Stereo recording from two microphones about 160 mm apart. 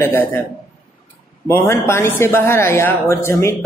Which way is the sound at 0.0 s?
15° left (ahead or behind).